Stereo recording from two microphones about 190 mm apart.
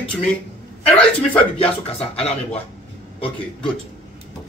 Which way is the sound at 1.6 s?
30° left (ahead or behind).